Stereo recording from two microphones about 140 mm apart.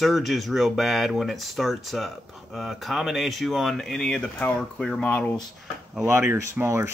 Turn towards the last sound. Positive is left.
turn(degrees=-20)  # may be behind; listen again after turning